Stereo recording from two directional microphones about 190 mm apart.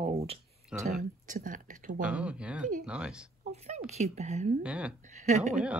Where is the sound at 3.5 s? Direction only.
35° right (ahead or behind).